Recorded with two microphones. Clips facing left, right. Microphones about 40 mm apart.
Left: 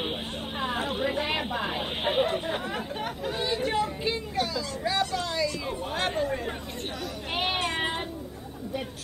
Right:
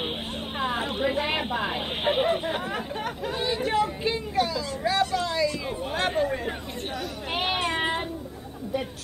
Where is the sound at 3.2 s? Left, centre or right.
Centre.